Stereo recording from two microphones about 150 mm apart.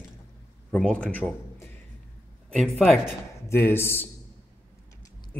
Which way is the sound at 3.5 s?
15° left (ahead or behind).